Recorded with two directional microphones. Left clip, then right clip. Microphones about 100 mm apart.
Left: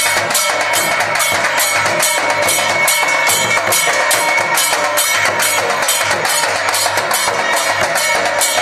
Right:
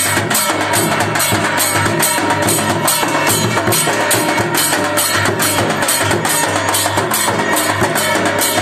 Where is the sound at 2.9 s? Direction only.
10° left (ahead or behind).